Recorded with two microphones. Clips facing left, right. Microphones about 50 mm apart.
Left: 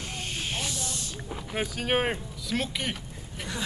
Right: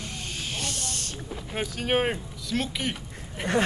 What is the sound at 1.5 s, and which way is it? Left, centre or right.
Speech, centre.